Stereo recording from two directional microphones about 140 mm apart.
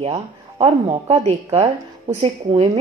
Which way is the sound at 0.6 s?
40° right (ahead or behind).